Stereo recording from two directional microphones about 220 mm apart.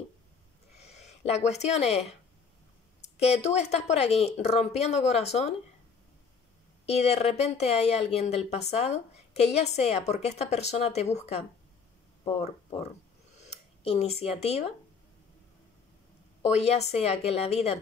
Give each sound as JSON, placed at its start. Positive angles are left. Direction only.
{"t": 0.7, "sound": "a sound", "side_deg": 30}
{"t": 1.5, "sound": "speech", "side_deg": 30}
{"t": 6.9, "sound": "speech", "side_deg": 30}
{"t": 16.5, "sound": "speech", "side_deg": 30}